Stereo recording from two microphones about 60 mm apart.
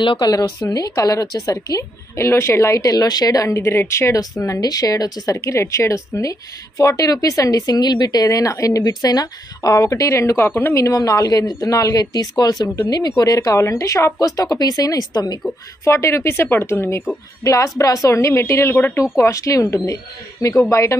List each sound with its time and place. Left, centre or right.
0.3 s a woman's voice: left
2.2 s speech: left
2.8 s a woman's voice: left
3.4 s speech: left
4.4 s a woman's voice: left
10.7 s a woman's voice: left
13.6 s speech: left
14.2 s a woman's voice: left
15.8 s speech: left
16.7 s speech: left
17.4 s speech: left
19.1 s speech: left